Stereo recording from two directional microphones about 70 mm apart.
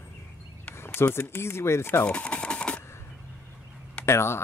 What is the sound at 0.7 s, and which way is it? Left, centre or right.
Speech, left.